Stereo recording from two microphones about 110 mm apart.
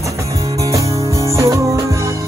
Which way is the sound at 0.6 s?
30° right (ahead or behind).